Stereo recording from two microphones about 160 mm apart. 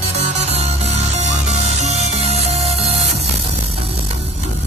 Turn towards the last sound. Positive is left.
turn(degrees=-40)  # may be behind; listen again after turning